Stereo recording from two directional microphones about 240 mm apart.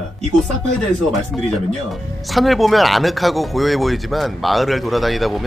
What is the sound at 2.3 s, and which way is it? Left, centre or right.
Speech, centre.